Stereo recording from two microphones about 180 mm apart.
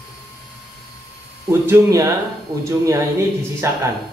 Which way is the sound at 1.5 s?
15° right (ahead or behind).